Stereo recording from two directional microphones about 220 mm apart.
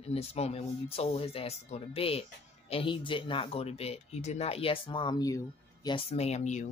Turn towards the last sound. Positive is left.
turn(degrees=30)  # may be behind; listen again after turning